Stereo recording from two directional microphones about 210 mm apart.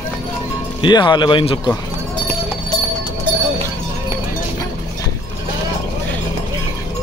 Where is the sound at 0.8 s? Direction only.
20° left (ahead or behind).